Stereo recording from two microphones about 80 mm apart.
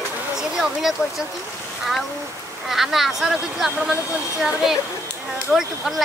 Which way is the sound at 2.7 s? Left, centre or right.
Centre.